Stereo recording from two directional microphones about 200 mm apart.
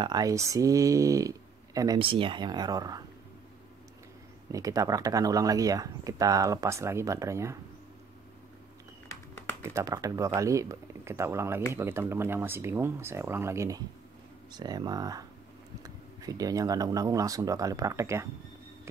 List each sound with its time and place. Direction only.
0.0 s speech: 20° right (ahead or behind)
4.5 s speech: 15° right (ahead or behind)
9.6 s speech: 15° right (ahead or behind)